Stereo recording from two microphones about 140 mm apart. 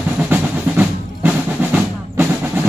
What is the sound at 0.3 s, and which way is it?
Percussion, 15° right (ahead or behind).